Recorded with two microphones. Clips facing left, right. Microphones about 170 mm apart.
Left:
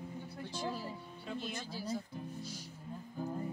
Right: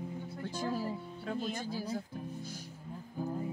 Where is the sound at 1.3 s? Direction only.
50° right (ahead or behind).